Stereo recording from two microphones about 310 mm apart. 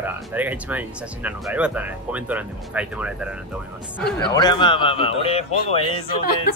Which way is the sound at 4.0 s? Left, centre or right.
Centre.